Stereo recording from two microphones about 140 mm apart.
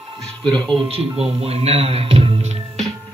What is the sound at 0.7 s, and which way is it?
Speech, 40° right (ahead or behind).